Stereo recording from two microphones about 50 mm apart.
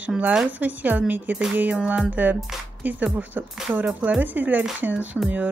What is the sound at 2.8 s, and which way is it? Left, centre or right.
Speech, right.